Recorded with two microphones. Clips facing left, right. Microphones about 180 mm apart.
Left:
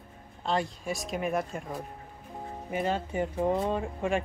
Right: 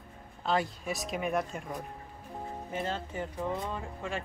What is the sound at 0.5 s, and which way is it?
Speech, centre (ahead or behind).